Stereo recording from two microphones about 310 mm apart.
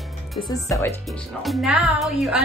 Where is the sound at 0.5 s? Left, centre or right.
Centre.